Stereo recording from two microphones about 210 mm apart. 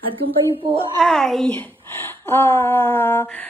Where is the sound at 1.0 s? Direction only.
Centre (ahead or behind).